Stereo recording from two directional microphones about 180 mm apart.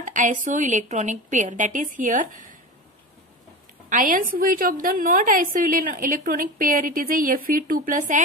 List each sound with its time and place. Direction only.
0.0 s a woman's voice: 45° right (ahead or behind)
3.9 s a woman's voice: 50° right (ahead or behind)